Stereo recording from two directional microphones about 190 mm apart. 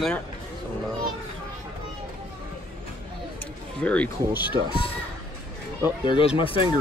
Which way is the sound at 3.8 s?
5° left (ahead or behind).